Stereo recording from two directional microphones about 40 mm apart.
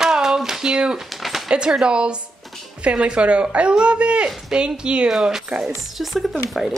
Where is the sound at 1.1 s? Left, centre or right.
Centre.